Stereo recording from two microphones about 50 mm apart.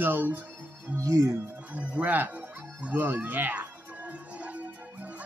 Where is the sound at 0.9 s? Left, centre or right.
Right.